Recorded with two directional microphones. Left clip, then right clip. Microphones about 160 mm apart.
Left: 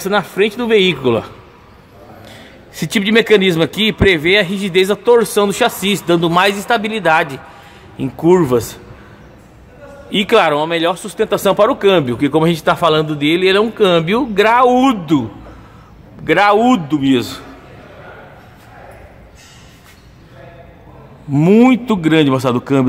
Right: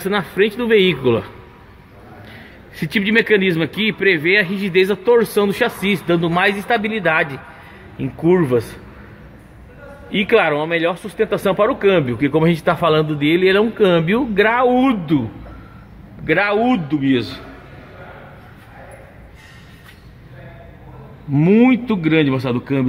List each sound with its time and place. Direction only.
0.0 s a man's voice: 10° left (ahead or behind)
10.1 s speech: 15° left (ahead or behind)
16.3 s a man's voice: 20° left (ahead or behind)
21.3 s a man's voice: 15° left (ahead or behind)